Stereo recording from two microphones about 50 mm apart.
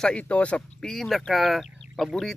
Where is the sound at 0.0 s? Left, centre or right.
Left.